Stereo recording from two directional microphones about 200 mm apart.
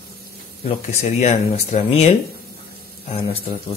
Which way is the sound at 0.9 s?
35° left (ahead or behind).